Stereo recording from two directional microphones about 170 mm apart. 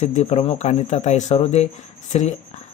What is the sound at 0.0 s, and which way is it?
A man's voice, 40° left (ahead or behind).